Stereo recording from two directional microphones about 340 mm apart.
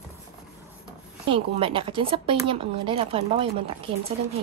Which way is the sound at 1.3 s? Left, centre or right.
Centre.